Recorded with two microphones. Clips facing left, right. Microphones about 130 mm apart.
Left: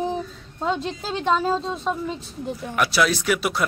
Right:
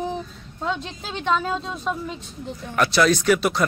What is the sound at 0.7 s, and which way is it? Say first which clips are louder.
A woman's voice: left 5 dB; 35° left (ahead or behind).